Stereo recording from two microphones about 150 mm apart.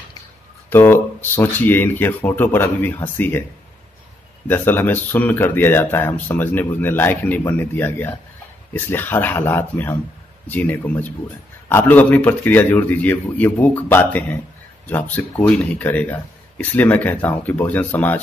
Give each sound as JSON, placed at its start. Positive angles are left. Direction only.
{"t": 0.7, "sound": "speech", "side_deg": 15}
{"t": 4.5, "sound": "speech", "side_deg": 15}